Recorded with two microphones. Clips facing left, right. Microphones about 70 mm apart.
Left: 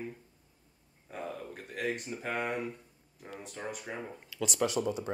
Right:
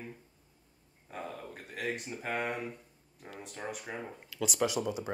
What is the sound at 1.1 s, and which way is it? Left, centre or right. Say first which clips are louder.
A woman's voice: left 2 dB; centre.